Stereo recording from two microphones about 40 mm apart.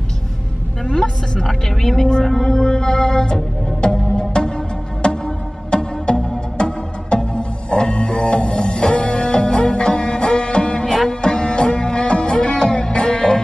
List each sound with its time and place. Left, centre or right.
0.9 s a woman's voice: centre
3.8 s music: left
10.9 s music: centre